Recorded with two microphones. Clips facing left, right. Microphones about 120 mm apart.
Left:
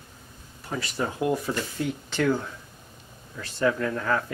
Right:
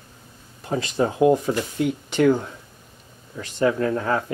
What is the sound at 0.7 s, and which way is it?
Speech, 25° right (ahead or behind).